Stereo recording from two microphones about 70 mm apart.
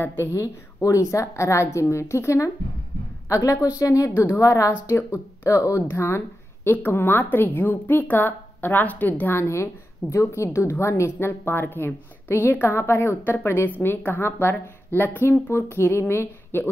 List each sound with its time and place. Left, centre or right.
0.0 s a woman's voice: left
4.1 s a woman's voice: left
4.4 s a woman's voice: left
4.8 s a woman's voice: left
9.4 s a woman's voice: left